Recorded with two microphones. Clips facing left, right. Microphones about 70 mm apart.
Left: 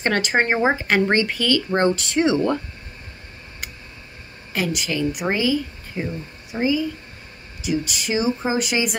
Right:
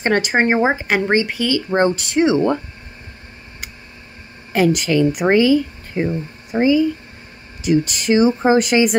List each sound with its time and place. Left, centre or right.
0.0 s speech: right
4.5 s speech: right